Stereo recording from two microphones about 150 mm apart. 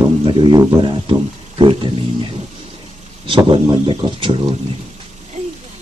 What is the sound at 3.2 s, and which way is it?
Speech, 35° right (ahead or behind).